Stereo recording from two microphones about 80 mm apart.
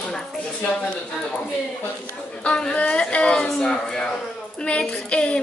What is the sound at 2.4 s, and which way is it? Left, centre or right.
A woman's voice, centre.